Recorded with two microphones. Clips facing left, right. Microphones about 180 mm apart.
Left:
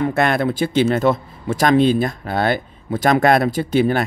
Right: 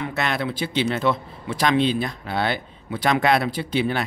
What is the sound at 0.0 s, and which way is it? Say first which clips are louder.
Speech: left 8 dB; 50° left (ahead or behind).